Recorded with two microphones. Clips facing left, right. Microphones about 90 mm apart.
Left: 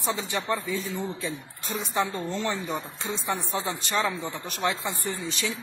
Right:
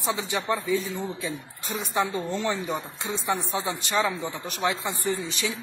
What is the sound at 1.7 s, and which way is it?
Speech, 10° right (ahead or behind).